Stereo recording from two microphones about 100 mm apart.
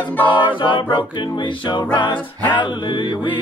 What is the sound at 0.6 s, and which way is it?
A capella, 55° left (ahead or behind).